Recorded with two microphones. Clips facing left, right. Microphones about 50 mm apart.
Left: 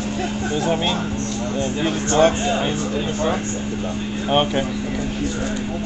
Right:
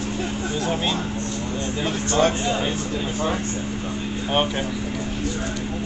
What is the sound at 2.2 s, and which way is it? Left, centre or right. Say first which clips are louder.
Speech: left 4 dB; centre.